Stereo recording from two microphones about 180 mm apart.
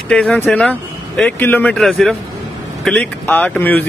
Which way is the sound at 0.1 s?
5° left (ahead or behind).